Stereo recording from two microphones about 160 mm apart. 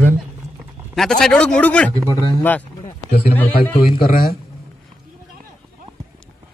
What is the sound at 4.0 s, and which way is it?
Speech, 65° left (ahead or behind).